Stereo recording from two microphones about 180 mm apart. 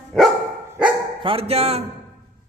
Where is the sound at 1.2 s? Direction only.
35° right (ahead or behind).